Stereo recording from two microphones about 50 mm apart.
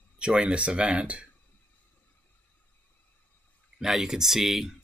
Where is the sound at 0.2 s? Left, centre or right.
Right.